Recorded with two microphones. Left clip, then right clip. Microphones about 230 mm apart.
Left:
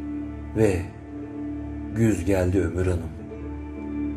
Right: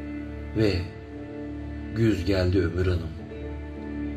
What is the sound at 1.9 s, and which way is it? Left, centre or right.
Speech, centre.